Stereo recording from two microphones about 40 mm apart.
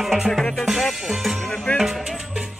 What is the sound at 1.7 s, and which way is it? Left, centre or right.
Music, left.